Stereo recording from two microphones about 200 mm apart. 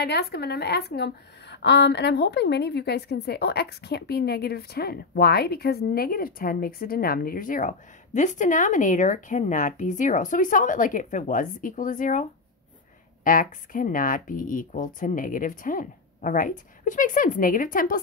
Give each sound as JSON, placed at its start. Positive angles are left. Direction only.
{"t": 0.0, "sound": "a woman's voice", "side_deg": 55}